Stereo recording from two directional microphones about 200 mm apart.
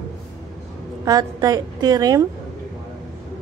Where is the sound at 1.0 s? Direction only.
20° right (ahead or behind).